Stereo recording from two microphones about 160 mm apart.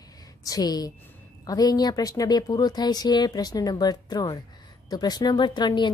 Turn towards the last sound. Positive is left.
turn(degrees=30)  # may be behind; listen again after turning